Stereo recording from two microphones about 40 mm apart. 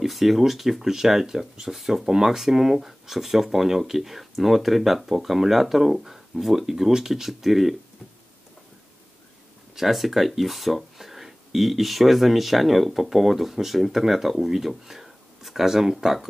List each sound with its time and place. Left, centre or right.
0.0 s speech: centre
9.8 s speech: centre